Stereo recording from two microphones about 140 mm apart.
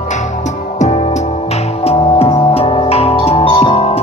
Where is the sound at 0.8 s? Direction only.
50° left (ahead or behind).